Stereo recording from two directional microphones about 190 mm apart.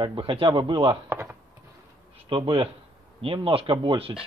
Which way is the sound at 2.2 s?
25° right (ahead or behind).